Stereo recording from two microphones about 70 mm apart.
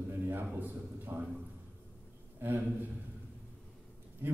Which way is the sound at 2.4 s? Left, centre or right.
Right.